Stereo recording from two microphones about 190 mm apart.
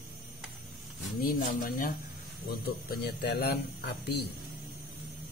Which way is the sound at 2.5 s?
55° left (ahead or behind).